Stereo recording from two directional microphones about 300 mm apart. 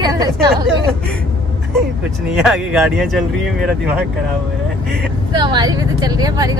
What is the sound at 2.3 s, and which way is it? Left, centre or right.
Speech, centre.